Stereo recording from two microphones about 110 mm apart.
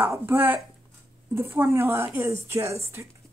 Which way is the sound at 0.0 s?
20° right (ahead or behind).